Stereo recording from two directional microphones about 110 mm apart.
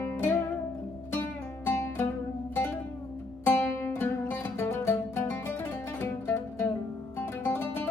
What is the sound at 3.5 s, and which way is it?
Music, 25° left (ahead or behind).